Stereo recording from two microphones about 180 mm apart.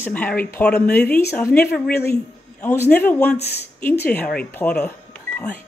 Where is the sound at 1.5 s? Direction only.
60° left (ahead or behind).